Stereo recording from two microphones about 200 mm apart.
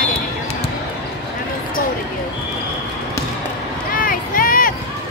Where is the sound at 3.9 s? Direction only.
45° left (ahead or behind).